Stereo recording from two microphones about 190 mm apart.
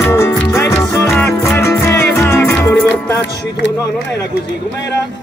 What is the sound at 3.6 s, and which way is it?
Speech, 70° left (ahead or behind).